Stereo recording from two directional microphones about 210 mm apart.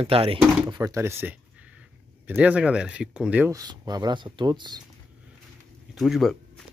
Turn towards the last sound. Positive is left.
turn(degrees=0)  # may be behind; listen again after turning